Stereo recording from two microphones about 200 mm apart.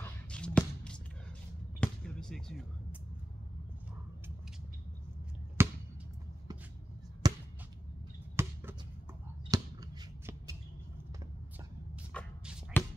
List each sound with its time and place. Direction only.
0.0 s music: 5° left (ahead or behind)
5.6 s basketball bounce: 10° right (ahead or behind)
7.2 s basketball bounce: 20° right (ahead or behind)
8.4 s a sound: 15° right (ahead or behind)
9.5 s shuffling cards: 15° right (ahead or behind)
12.1 s shuffle: 5° left (ahead or behind)
12.7 s music: 10° left (ahead or behind)